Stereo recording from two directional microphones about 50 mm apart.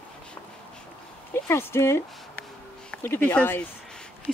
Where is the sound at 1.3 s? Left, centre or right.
Left.